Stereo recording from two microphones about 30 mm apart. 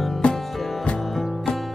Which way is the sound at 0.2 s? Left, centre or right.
Left.